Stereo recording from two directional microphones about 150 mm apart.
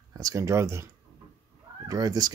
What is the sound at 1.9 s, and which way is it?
Speech, 25° right (ahead or behind).